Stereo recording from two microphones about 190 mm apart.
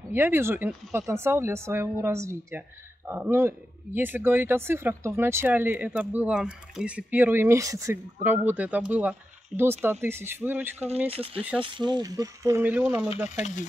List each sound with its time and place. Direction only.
0.1 s speech: 10° right (ahead or behind)
11.1 s speech: 30° right (ahead or behind); by 13.1 s 10° right (ahead or behind)
13.4 s stir: 40° left (ahead or behind)